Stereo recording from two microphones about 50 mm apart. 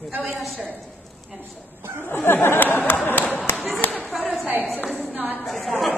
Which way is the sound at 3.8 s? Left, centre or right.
Left.